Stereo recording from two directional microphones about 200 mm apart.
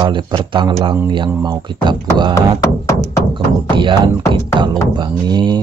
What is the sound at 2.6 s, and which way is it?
Music, 15° left (ahead or behind).